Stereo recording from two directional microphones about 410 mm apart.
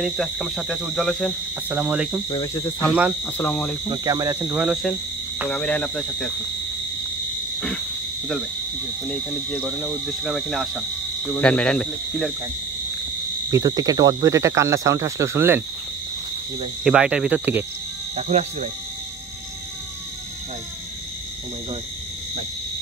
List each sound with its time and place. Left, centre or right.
0.0 s cricket: centre
2.2 s cricket: centre
3.9 s speech: centre
5.4 s cricket: centre
9.5 s cricket: centre
13.5 s speech: centre
16.8 s cricket: centre
18.1 s speech: centre